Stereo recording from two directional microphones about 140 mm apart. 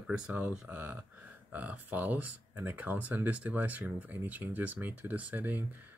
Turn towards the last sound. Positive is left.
turn(degrees=-10)  # may be behind; listen again after turning